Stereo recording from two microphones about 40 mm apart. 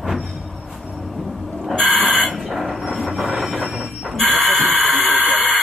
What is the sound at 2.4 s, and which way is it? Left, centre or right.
Train, centre.